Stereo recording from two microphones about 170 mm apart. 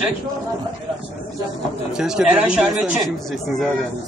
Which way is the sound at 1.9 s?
5° right (ahead or behind).